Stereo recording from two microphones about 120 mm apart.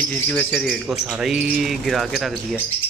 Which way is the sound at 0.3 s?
10° left (ahead or behind).